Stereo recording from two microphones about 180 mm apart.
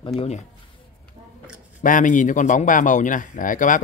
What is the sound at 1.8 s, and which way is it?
A man's voice, 45° left (ahead or behind).